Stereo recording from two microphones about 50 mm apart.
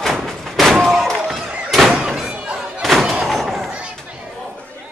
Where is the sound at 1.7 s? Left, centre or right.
Centre.